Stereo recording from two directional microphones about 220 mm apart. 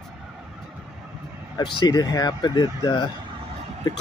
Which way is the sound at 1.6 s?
20° left (ahead or behind).